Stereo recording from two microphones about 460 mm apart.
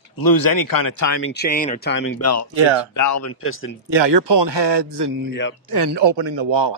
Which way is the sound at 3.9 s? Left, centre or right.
Right.